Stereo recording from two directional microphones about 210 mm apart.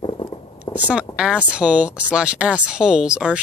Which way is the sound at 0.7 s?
5° right (ahead or behind).